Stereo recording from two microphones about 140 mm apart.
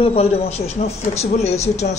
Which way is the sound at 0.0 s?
45° left (ahead or behind).